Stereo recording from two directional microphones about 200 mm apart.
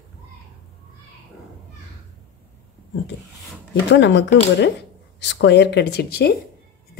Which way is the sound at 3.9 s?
60° left (ahead or behind).